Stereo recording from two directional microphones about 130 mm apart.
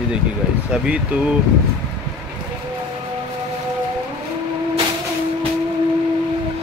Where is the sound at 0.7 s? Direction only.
10° right (ahead or behind).